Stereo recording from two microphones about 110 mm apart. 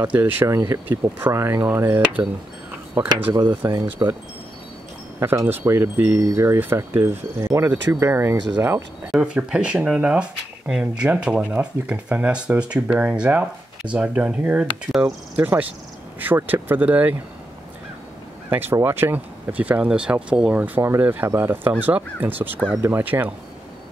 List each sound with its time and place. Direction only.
0.0 s speech: 20° right (ahead or behind)
3.3 s speech: 40° right (ahead or behind)
5.5 s speech: 20° right (ahead or behind)
9.1 s speech: 10° right (ahead or behind)
18.5 s speech: 20° right (ahead or behind)